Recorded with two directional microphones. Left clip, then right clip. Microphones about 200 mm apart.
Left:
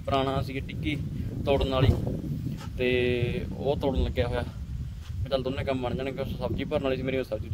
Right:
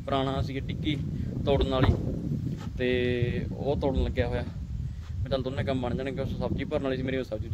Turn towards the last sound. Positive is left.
turn(degrees=0)  # may be behind; listen again after turning